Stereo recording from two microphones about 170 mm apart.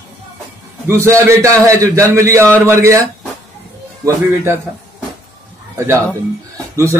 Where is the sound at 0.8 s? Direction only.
15° right (ahead or behind).